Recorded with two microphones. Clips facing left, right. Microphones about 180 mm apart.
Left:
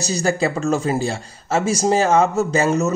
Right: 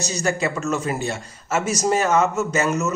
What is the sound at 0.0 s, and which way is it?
Speech, 35° left (ahead or behind).